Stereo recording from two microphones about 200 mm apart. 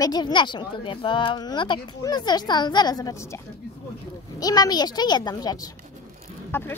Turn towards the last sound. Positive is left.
turn(degrees=10)  # may be behind; listen again after turning